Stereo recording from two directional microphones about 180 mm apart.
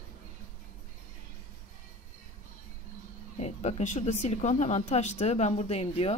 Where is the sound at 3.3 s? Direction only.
35° left (ahead or behind).